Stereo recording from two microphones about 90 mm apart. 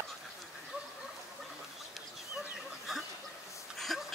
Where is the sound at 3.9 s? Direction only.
Centre (ahead or behind).